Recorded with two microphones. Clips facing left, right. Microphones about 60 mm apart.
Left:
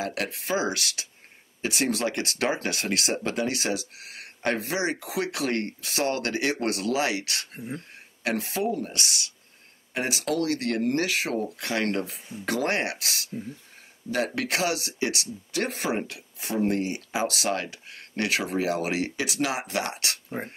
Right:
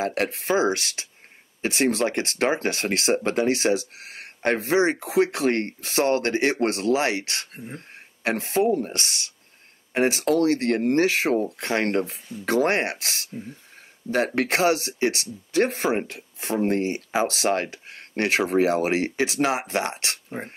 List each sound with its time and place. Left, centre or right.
0.0 s speech: right